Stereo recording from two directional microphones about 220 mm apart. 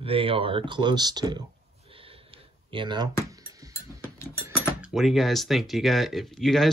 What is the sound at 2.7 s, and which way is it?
Speech, 20° right (ahead or behind).